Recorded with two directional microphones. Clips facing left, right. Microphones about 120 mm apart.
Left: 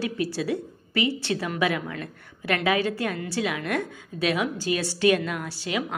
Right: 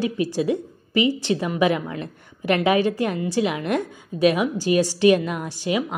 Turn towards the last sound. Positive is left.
turn(degrees=-20)  # may be behind; listen again after turning